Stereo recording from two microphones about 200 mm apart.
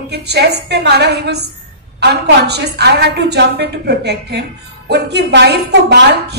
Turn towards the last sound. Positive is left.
turn(degrees=-55)  # may be behind; listen again after turning